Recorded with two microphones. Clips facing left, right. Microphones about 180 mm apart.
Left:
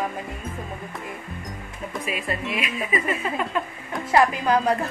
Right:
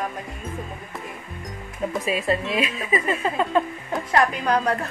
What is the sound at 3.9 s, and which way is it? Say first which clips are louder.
Speech: left 2 dB; 5° left (ahead or behind).